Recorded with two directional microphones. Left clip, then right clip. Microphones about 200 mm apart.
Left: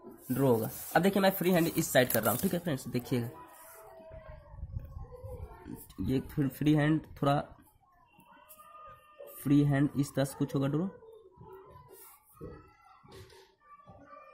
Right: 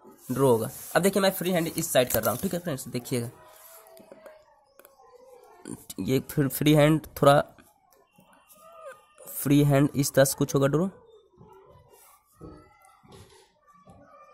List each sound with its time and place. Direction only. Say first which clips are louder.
0.3 s speech: right 6 dB; 35° right (ahead or behind)
5.9 s speech: right 7 dB; 45° right (ahead or behind)
9.4 s speech: right 6 dB; 45° right (ahead or behind)